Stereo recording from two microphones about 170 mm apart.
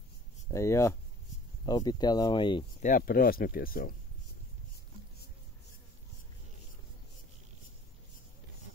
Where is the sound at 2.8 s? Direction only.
55° left (ahead or behind).